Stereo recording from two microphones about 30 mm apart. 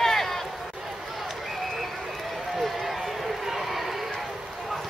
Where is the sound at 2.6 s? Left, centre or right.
Centre.